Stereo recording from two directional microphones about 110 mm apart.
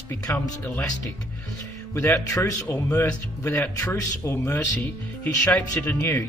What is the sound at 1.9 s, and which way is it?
Speech, 25° left (ahead or behind).